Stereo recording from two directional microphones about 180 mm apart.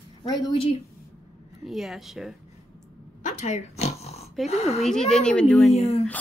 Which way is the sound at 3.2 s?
40° left (ahead or behind).